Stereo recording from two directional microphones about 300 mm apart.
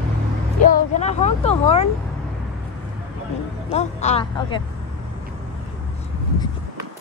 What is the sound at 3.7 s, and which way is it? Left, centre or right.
Speech, left.